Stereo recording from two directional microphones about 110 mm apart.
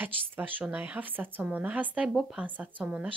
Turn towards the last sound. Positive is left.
turn(degrees=-10)  # may be behind; listen again after turning